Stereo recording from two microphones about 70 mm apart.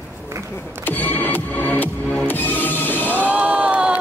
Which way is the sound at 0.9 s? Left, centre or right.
Left.